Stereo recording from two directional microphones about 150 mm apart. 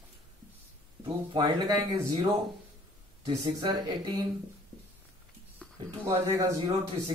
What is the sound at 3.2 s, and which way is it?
Speech, 25° right (ahead or behind).